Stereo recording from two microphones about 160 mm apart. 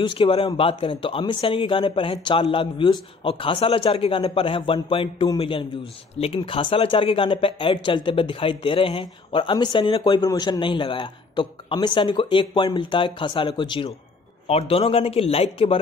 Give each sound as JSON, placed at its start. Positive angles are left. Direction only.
{"t": 0.0, "sound": "speech", "side_deg": 35}